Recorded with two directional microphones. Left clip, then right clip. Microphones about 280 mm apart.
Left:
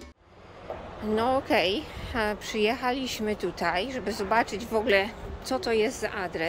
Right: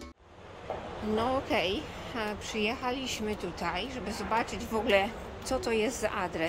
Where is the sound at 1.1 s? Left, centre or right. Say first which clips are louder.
Left 5 dB; centre.